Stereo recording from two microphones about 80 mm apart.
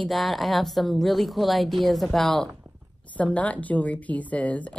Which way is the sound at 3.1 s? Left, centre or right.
Centre.